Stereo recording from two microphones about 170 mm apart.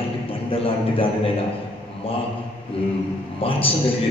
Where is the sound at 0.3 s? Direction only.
35° left (ahead or behind).